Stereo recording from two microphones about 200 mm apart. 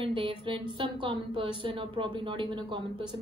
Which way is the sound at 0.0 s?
25° right (ahead or behind).